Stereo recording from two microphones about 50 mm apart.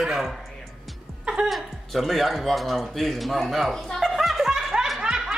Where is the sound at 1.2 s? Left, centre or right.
Right.